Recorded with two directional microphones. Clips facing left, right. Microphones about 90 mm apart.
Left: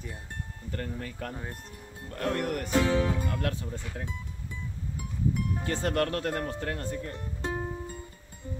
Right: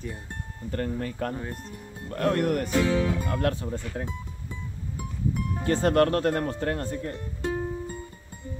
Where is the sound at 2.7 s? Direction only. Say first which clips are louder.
Left 2 dB; 25° left (ahead or behind).